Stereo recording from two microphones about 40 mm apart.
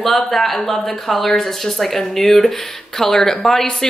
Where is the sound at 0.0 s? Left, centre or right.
Centre.